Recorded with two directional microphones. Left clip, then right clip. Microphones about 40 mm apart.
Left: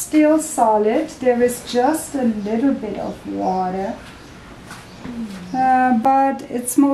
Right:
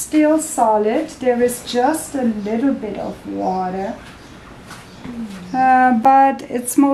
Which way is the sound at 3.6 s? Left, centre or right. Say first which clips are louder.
Even; centre.